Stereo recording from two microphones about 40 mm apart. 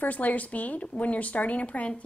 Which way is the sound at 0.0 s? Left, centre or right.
Left.